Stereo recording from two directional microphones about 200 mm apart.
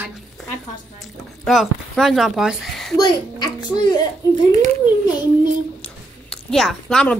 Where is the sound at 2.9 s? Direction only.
20° left (ahead or behind).